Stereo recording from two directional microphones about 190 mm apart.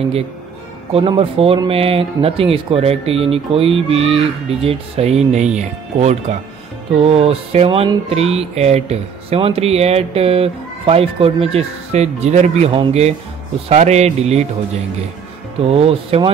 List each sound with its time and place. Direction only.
0.9 s speech: 25° right (ahead or behind)
15.7 s speech: 30° right (ahead or behind)